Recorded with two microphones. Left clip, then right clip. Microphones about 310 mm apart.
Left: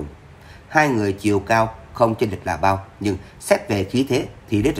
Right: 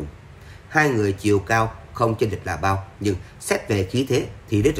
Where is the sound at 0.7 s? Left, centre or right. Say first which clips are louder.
Left 2 dB; centre.